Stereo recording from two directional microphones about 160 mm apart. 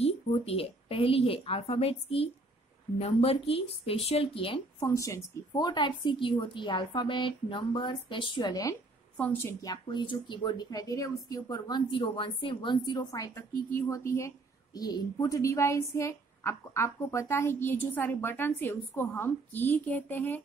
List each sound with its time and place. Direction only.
0.0 s speech: 40° left (ahead or behind)
4.8 s a woman's voice: 20° left (ahead or behind)
9.1 s a woman's voice: 10° left (ahead or behind)